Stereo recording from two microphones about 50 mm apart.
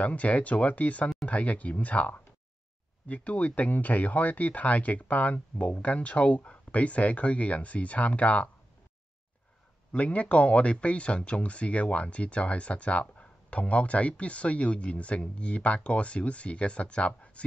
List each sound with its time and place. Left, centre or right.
0.0 s speech: left
9.9 s speech: left